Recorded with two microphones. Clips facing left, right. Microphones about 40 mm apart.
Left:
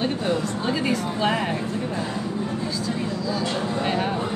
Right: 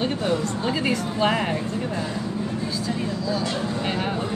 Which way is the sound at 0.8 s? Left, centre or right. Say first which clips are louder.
Right 2 dB; centre.